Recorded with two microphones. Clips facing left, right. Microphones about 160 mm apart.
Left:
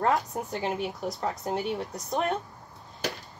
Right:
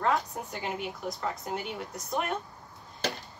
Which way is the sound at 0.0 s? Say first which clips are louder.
Left 2 dB; 40° left (ahead or behind).